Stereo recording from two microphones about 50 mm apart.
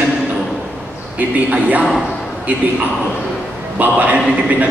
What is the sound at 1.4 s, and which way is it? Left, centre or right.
Speech, right.